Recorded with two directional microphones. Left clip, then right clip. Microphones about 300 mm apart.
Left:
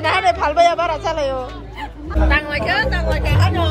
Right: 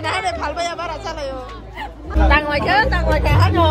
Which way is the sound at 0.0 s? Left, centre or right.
Centre.